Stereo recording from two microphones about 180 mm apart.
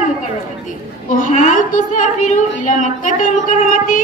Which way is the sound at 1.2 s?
45° left (ahead or behind).